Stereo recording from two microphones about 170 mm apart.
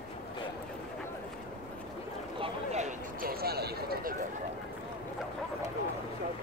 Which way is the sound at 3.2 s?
65° right (ahead or behind).